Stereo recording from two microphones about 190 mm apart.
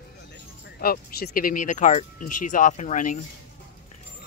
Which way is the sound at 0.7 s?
50° left (ahead or behind).